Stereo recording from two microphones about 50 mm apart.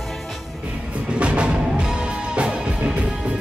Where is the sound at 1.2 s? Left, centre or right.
Right.